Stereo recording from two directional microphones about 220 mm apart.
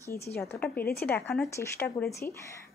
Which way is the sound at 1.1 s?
10° left (ahead or behind).